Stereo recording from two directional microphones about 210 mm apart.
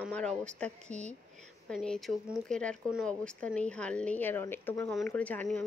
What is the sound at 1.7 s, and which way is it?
Speech, centre (ahead or behind).